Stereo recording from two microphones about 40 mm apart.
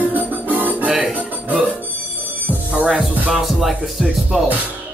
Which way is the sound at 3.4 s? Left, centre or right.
Centre.